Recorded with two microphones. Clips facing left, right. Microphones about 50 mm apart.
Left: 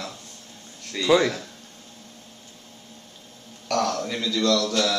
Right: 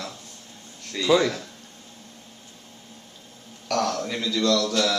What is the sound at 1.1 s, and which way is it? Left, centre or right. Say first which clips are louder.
Speech: left 1 dB; left.